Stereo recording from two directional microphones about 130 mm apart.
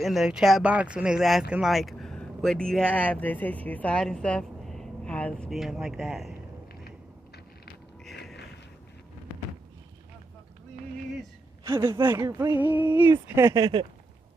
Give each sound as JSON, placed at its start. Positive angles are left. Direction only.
{"t": 0.0, "sound": "speech", "side_deg": 0}
{"t": 5.5, "sound": "speech", "side_deg": 0}
{"t": 8.0, "sound": "a sound", "side_deg": 0}
{"t": 11.6, "sound": "speech", "side_deg": -20}
{"t": 12.5, "sound": "a sound", "side_deg": -15}
{"t": 13.1, "sound": "speech", "side_deg": -20}